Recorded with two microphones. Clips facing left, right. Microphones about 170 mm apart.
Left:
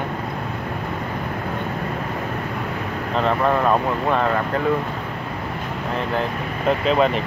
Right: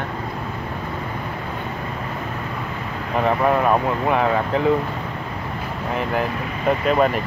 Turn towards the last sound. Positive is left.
turn(degrees=-5)  # may be behind; listen again after turning